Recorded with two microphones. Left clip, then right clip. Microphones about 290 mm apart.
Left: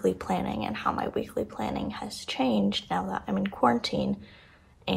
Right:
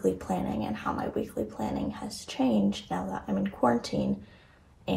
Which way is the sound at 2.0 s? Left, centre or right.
Centre.